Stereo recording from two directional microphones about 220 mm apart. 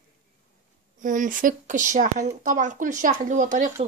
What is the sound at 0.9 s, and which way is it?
Speech, 35° right (ahead or behind).